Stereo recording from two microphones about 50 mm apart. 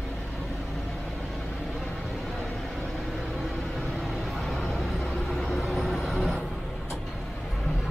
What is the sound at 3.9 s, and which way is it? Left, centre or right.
Vehicle, centre.